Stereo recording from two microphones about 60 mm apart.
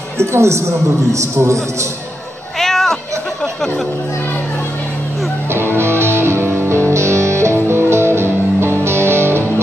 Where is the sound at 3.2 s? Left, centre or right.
Centre.